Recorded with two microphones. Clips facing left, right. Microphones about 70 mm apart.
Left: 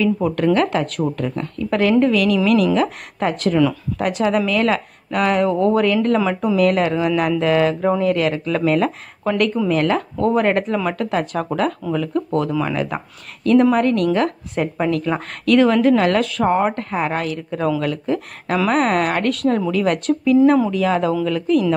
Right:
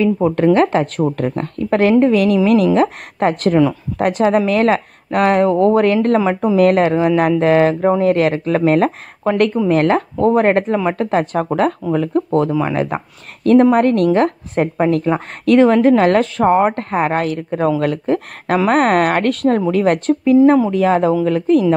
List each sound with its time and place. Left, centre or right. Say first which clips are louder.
0.0 s speech: right 4 dB; right
3.5 s speech: right 3 dB; right